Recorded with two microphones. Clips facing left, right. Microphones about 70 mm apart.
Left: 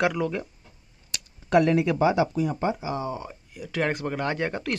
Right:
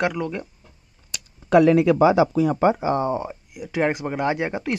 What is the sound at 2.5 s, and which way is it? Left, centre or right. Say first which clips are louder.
Speech: right 8 dB; right.